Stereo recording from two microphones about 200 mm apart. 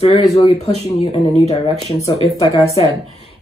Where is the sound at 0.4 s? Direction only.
30° left (ahead or behind).